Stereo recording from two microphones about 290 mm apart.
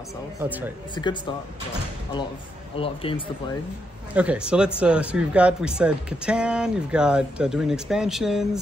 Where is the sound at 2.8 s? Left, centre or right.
Centre.